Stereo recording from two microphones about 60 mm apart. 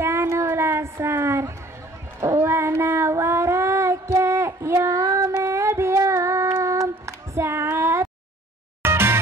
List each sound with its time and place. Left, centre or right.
0.0 s a sound: right
2.1 s child singing: right
8.8 s music: right